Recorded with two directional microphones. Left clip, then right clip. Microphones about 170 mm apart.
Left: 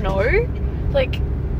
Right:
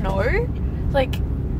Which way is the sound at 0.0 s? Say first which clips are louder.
Left 3 dB; 5° right (ahead or behind).